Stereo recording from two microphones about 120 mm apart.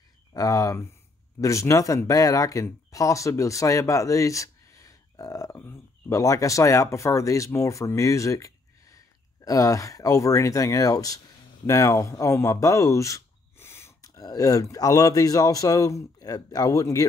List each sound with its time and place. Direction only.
0.3 s speech: 30° left (ahead or behind)